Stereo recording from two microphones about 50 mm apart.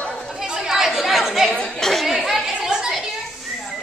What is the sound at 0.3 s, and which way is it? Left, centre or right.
Chatter, centre.